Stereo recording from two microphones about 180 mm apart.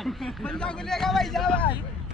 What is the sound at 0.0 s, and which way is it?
Speech, centre (ahead or behind).